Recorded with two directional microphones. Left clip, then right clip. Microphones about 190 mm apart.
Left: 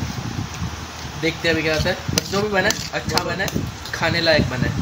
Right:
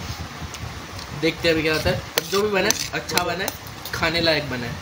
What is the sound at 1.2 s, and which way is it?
Speech, 15° right (ahead or behind).